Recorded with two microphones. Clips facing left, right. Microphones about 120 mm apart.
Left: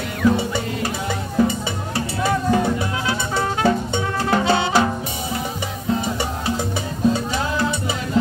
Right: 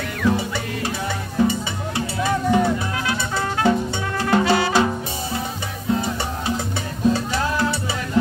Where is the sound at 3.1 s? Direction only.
20° left (ahead or behind).